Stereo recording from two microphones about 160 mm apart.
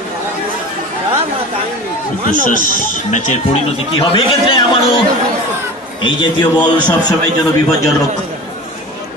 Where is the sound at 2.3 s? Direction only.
55° left (ahead or behind).